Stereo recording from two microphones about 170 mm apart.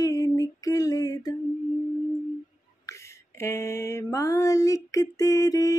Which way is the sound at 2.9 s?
15° left (ahead or behind).